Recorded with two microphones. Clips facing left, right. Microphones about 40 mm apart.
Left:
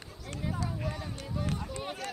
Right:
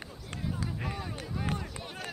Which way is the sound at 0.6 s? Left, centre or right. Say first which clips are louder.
Even; centre.